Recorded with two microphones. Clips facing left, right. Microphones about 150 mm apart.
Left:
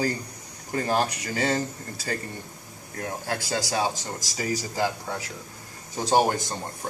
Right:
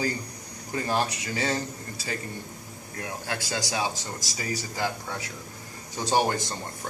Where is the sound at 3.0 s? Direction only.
40° left (ahead or behind).